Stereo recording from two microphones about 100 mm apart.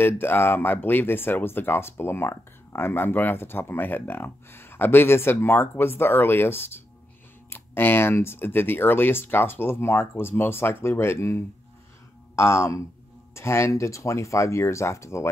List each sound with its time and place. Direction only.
0.0 s speech: 20° left (ahead or behind)